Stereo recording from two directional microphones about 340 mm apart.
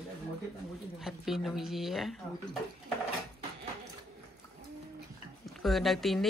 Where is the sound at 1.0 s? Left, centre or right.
Centre.